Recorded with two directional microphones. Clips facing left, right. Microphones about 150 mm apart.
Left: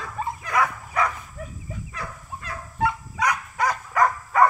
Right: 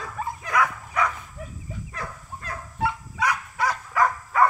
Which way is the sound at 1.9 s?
40° right (ahead or behind).